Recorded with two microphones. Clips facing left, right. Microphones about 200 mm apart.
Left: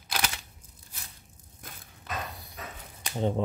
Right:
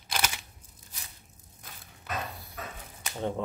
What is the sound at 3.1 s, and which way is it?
Speech, 20° left (ahead or behind).